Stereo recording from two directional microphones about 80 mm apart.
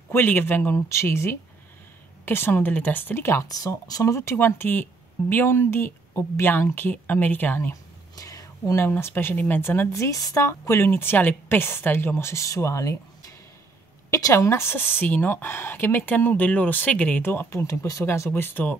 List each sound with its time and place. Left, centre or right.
0.1 s speech: left
3.4 s speech: left
4.0 s speech: left
7.7 s a sound: left
8.8 s speech: left
14.1 s speech: left